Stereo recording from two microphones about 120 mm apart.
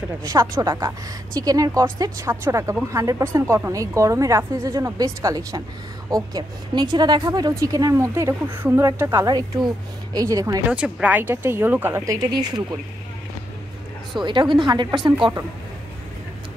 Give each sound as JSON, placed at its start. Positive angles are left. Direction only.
{"t": 0.2, "sound": "speech", "side_deg": -30}
{"t": 10.7, "sound": "speech", "side_deg": -10}
{"t": 12.1, "sound": "a woman's voice", "side_deg": -35}
{"t": 14.2, "sound": "a woman's voice", "side_deg": -40}